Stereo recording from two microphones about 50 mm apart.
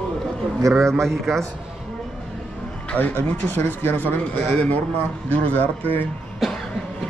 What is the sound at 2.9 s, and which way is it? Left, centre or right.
Speech, left.